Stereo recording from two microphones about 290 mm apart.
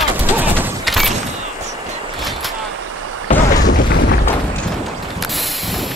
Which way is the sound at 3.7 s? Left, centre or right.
Left.